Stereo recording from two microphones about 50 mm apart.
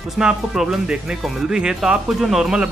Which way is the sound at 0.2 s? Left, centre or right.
Centre.